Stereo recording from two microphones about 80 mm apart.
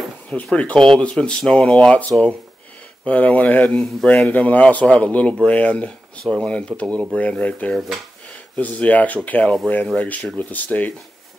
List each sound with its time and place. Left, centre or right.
0.3 s speech: centre
4.3 s speech: centre
6.2 s speech: centre
6.7 s speech: centre
7.2 s speech: centre